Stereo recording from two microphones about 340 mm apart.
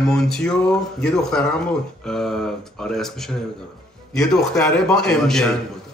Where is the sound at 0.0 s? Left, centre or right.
Centre.